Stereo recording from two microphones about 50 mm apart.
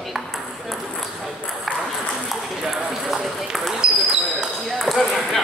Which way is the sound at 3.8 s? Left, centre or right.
Centre.